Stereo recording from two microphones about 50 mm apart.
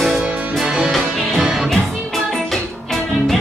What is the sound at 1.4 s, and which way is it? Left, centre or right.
Music, centre.